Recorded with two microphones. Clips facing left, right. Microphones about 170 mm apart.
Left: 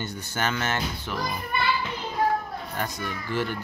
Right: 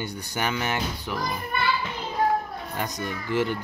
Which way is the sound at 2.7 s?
15° right (ahead or behind).